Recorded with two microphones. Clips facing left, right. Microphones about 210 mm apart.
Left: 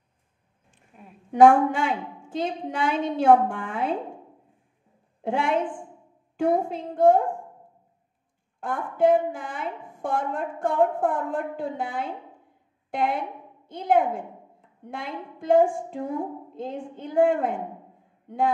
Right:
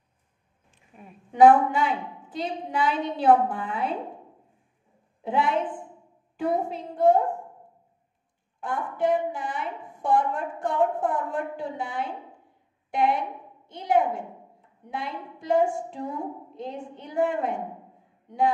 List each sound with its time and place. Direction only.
1.4 s a woman's voice: 50° left (ahead or behind)
6.3 s a woman's voice: 50° left (ahead or behind)
8.5 s a woman's voice: 50° left (ahead or behind)